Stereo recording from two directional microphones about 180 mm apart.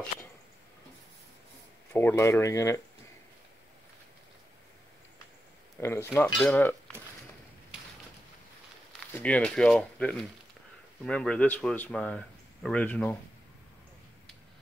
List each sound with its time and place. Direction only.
1.9 s speech: 15° left (ahead or behind)
5.8 s speech: 15° left (ahead or behind)
9.1 s speech: 5° left (ahead or behind)